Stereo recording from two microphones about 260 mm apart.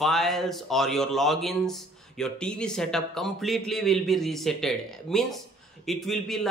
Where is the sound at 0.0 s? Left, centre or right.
Centre.